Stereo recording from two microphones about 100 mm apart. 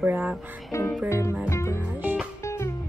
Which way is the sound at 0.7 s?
30° left (ahead or behind).